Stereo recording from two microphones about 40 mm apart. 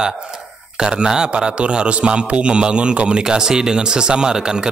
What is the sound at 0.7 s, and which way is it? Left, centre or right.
Speech, centre.